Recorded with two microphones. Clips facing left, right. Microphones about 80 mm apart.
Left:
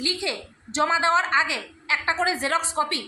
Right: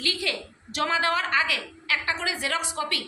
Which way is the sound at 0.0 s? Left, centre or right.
Left.